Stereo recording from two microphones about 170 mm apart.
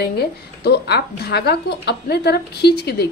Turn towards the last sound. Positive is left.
turn(degrees=75)  # may be behind; listen again after turning